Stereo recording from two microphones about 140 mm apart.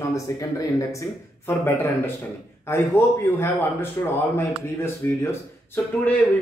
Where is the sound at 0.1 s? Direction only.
25° left (ahead or behind).